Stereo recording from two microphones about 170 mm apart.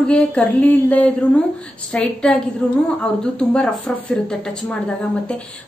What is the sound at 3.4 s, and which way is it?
Speech, 5° left (ahead or behind).